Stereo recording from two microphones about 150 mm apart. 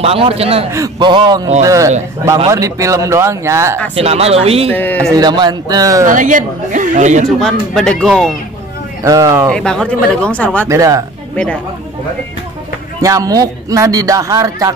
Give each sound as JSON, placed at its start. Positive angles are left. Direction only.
{"t": 0.0, "sound": "speech", "side_deg": -40}
{"t": 0.7, "sound": "speech", "side_deg": -20}
{"t": 3.9, "sound": "speech", "side_deg": -40}
{"t": 4.7, "sound": "speech", "side_deg": 10}
{"t": 5.1, "sound": "speech", "side_deg": -30}
{"t": 6.0, "sound": "speech", "side_deg": -60}
{"t": 7.2, "sound": "speech", "side_deg": 5}
{"t": 9.0, "sound": "speech", "side_deg": -20}
{"t": 9.5, "sound": "speech", "side_deg": 5}
{"t": 10.7, "sound": "speech", "side_deg": -20}
{"t": 13.0, "sound": "speech", "side_deg": -25}